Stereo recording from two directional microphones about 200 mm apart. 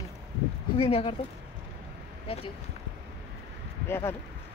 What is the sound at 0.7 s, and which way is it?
Speech, 30° left (ahead or behind).